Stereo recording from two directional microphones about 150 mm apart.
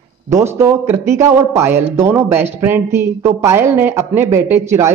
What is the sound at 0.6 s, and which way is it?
Speech, 15° right (ahead or behind).